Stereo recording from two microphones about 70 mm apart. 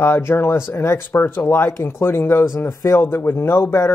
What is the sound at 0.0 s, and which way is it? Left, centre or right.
Speech, left.